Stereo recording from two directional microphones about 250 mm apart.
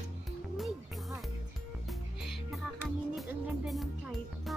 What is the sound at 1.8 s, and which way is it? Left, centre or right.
Music, centre.